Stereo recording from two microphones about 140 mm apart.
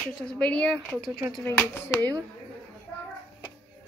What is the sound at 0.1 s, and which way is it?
Speech, 5° left (ahead or behind).